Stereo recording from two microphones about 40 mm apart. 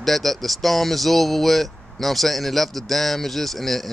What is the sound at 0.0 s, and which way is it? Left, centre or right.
Speech, centre.